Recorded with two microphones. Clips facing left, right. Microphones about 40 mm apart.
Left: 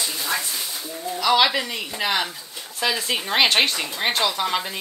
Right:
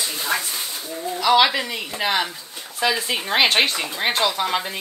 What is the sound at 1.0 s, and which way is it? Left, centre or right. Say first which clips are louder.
A woman's voice: right 2 dB; centre.